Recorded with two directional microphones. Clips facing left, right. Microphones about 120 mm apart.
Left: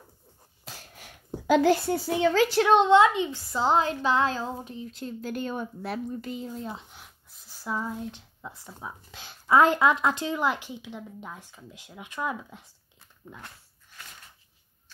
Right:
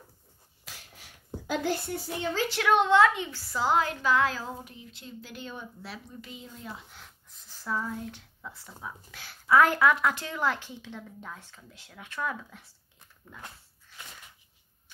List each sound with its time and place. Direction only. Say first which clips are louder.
1.5 s a child's voice: left 9 dB; 90° left
2.5 s speech: left 2 dB; 25° left (ahead or behind)
4.8 s a woman's voice: left 10 dB; 45° left (ahead or behind)
6.7 s speech: left 4 dB; 15° left (ahead or behind)